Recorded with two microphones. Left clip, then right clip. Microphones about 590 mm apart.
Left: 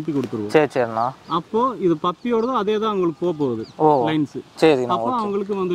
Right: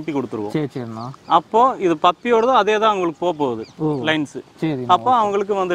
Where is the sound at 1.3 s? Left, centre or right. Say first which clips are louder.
Right 9 dB; right.